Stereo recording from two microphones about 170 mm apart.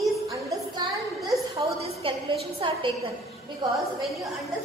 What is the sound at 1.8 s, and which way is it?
A woman's voice, 35° right (ahead or behind).